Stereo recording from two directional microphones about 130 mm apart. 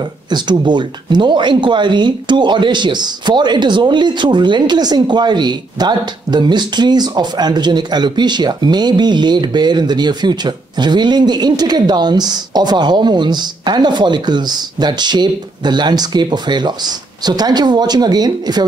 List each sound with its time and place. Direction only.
0.3 s speech: 35° right (ahead or behind)